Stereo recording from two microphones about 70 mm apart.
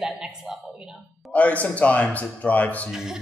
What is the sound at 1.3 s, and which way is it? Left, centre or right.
A man's voice, left.